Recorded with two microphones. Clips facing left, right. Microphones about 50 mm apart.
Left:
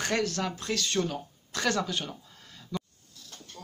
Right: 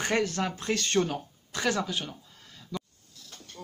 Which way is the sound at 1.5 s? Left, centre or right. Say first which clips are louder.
Even; centre.